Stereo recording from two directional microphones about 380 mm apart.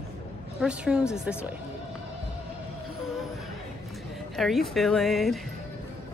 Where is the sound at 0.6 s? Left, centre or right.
Centre.